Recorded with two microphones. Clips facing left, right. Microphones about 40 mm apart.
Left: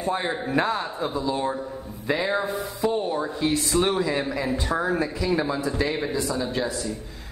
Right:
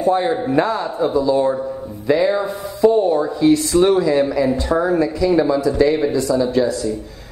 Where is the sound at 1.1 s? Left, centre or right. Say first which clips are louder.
Right 11 dB; left.